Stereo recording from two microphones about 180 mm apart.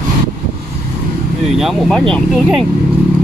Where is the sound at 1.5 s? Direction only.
Centre (ahead or behind).